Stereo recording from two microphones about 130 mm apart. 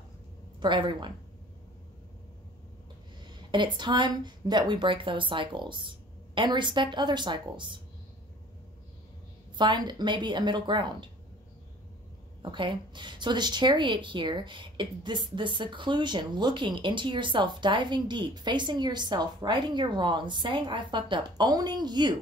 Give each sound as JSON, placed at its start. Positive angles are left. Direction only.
{"t": 0.6, "sound": "a woman's voice", "side_deg": -35}
{"t": 3.3, "sound": "a woman's voice", "side_deg": -35}
{"t": 9.6, "sound": "a woman's voice", "side_deg": -35}
{"t": 12.4, "sound": "a woman's voice", "side_deg": -40}